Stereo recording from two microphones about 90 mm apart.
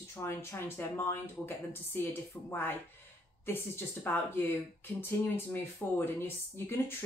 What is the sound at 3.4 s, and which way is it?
Speech, 25° left (ahead or behind).